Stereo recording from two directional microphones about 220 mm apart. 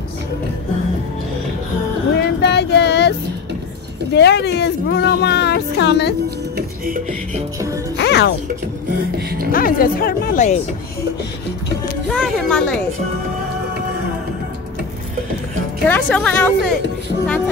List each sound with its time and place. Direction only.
2.1 s a sound: 50° left (ahead or behind)
4.1 s speech: 50° left (ahead or behind)
6.5 s music: 40° right (ahead or behind)
7.5 s speech: 15° right (ahead or behind)
8.0 s speech: 50° left (ahead or behind)
8.8 s beatboxing: 45° right (ahead or behind)
9.5 s speech: 40° left (ahead or behind)
12.1 s speech: centre (ahead or behind)
15.9 s a woman's voice: 5° left (ahead or behind)